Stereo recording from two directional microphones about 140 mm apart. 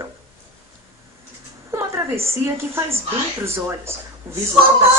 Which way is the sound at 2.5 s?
20° right (ahead or behind).